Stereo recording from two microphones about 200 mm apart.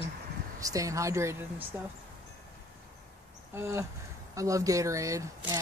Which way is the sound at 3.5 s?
15° right (ahead or behind).